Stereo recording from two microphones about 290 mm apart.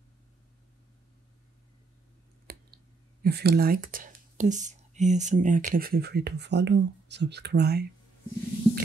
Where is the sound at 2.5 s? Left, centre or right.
Right.